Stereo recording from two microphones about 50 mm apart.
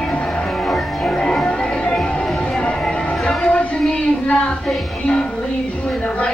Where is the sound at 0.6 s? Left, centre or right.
Centre.